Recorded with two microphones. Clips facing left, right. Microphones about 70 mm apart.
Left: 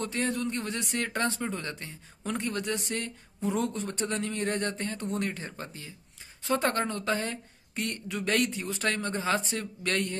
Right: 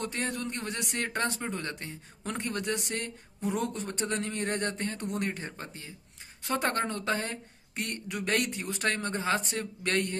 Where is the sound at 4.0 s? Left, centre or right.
Right.